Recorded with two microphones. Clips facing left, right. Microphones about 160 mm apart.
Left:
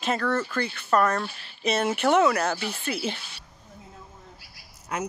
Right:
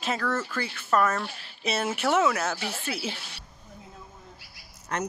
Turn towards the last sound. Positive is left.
turn(degrees=5)  # may be behind; listen again after turning